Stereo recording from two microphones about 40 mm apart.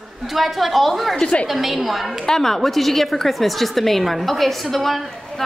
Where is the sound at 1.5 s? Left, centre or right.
Centre.